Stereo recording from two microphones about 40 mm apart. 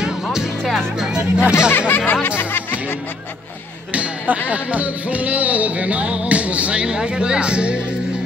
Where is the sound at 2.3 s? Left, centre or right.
Left.